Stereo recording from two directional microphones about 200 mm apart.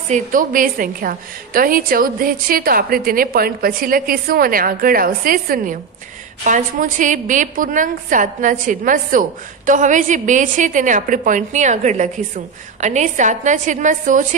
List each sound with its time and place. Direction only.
0.1 s a woman's voice: 45° right (ahead or behind)